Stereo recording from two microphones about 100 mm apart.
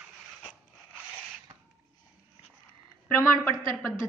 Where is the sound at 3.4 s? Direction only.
25° left (ahead or behind).